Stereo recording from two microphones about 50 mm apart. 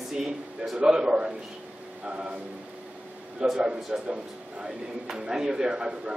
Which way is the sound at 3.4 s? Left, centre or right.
Centre.